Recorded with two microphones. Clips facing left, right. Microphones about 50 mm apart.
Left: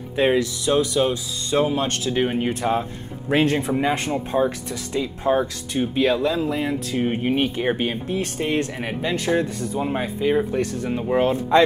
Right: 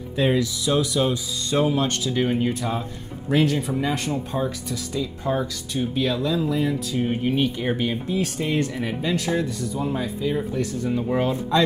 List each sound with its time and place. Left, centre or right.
0.1 s speech: left